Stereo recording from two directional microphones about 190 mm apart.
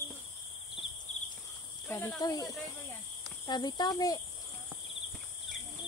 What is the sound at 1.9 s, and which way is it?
Speech, 15° left (ahead or behind).